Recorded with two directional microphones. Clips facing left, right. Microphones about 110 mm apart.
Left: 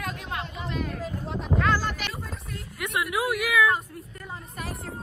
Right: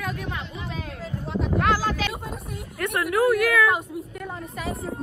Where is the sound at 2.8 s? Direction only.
5° left (ahead or behind).